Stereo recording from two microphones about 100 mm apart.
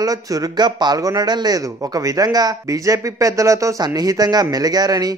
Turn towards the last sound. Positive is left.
turn(degrees=-40)  # may be behind; listen again after turning